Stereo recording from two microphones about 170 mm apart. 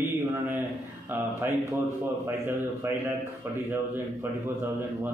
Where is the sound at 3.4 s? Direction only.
10° right (ahead or behind).